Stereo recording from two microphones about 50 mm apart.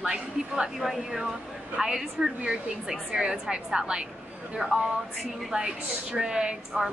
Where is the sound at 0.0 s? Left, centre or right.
Centre.